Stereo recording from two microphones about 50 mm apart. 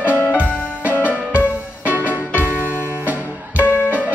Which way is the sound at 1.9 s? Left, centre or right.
Right.